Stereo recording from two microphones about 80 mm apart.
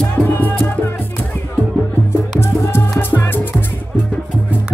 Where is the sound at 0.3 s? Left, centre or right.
Left.